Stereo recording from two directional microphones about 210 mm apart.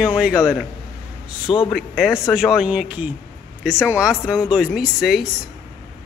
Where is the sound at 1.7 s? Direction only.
Centre (ahead or behind).